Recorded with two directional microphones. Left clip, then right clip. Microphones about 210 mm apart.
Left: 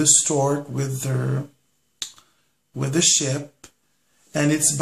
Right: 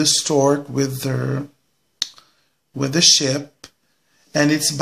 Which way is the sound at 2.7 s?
40° right (ahead or behind).